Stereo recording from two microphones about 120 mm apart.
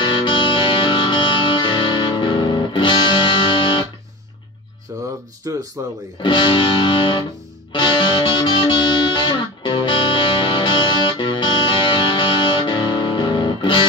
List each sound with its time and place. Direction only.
0.0 s music: 40° left (ahead or behind)
5.4 s speech: 30° right (ahead or behind)
6.2 s music: 40° left (ahead or behind)